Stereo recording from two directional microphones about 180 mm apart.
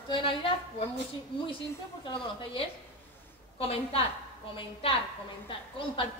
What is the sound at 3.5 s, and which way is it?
Speech, 30° left (ahead or behind).